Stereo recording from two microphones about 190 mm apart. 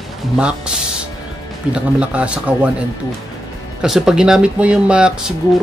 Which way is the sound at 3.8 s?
5° right (ahead or behind).